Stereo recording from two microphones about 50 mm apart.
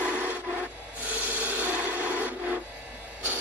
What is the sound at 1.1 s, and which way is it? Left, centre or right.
Filing, right.